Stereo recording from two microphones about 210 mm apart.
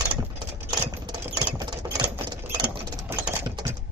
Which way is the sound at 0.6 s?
20° right (ahead or behind).